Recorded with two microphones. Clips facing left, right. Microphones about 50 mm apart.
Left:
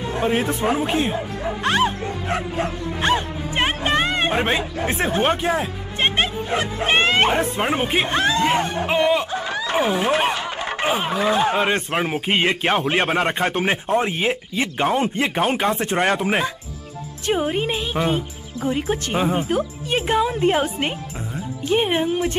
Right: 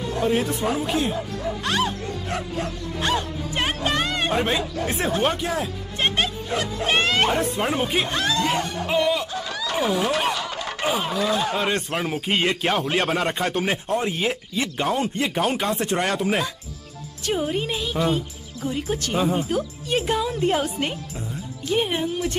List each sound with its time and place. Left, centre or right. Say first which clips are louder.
0.0 s speech: left 1 dB; left